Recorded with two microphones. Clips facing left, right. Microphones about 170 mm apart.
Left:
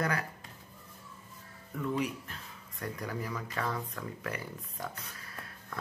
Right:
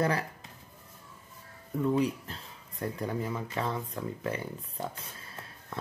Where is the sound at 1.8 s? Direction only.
30° right (ahead or behind).